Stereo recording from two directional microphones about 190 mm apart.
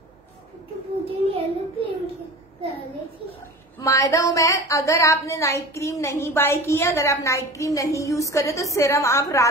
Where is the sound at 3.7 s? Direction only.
15° left (ahead or behind).